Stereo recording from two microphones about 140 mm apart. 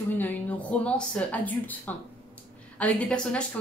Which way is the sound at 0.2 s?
10° left (ahead or behind).